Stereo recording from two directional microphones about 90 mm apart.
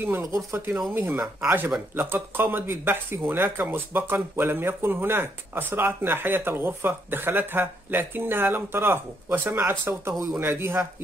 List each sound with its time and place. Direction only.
0.0 s speech: 30° right (ahead or behind)